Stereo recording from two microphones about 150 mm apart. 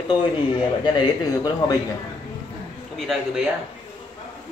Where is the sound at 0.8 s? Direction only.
30° left (ahead or behind).